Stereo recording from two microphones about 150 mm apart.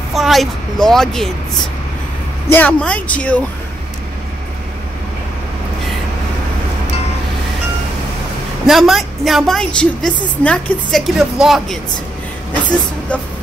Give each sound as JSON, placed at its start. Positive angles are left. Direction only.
{"t": 0.1, "sound": "a woman's voice", "side_deg": 0}
{"t": 2.5, "sound": "speech", "side_deg": 10}
{"t": 8.6, "sound": "a woman's voice", "side_deg": 0}